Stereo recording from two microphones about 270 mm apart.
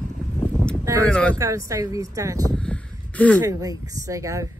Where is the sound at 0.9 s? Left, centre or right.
Centre.